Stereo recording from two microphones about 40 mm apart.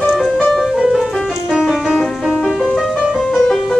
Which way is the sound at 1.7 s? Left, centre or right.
Centre.